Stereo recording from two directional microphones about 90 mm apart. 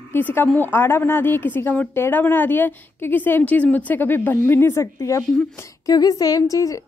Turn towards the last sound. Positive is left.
turn(degrees=40)  # may be behind; listen again after turning